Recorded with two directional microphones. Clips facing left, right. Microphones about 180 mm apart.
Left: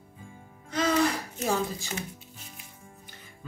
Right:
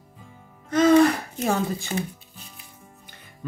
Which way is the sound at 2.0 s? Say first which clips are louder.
Right 8 dB; 35° right (ahead or behind).